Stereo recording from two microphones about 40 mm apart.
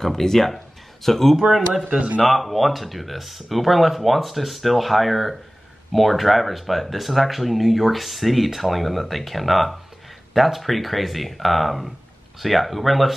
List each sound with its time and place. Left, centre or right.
0.0 s speech: centre
1.5 s speech: centre
1.9 s a man's voice: right
2.2 s speech: centre